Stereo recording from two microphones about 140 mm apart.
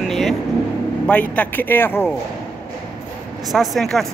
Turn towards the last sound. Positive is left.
turn(degrees=0)  # may be behind; listen again after turning